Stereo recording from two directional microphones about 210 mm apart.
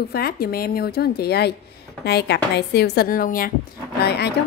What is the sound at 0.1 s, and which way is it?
A woman's voice, 45° left (ahead or behind).